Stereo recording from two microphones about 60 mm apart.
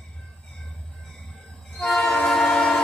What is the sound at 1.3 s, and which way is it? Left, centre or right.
Train, centre.